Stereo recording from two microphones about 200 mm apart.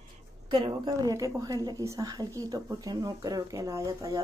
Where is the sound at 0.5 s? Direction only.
20° right (ahead or behind).